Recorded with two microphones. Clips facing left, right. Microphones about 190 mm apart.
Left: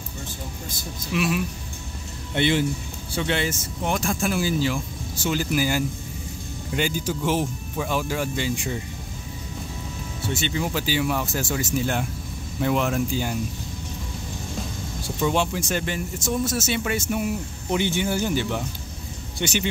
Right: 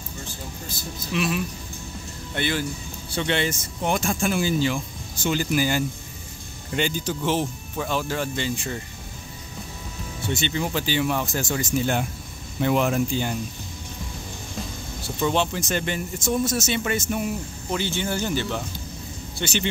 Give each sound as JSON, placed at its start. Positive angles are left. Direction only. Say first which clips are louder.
{"t": 1.1, "sound": "speech", "louder": "left 1 dB", "side_deg": 5}
{"t": 2.3, "sound": "speech", "louder": "left 5 dB", "side_deg": 25}
{"t": 3.1, "sound": "speech", "louder": "right 1 dB", "side_deg": 5}
{"t": 10.2, "sound": "speech", "louder": "even", "side_deg": 5}
{"t": 15.1, "sound": "speech", "louder": "even", "side_deg": 5}
{"t": 17.6, "sound": "a man's voice", "louder": "left 3 dB", "side_deg": 15}